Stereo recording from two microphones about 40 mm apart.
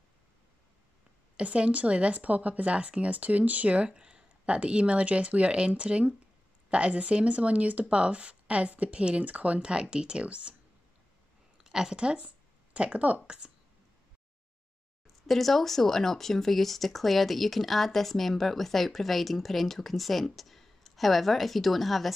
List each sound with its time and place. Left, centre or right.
1.3 s speech: right
11.5 s a woman's voice: centre; by 13.2 s right
15.0 s speech: centre